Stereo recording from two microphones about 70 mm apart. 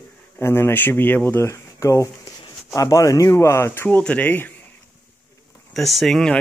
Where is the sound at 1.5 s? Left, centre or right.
Left.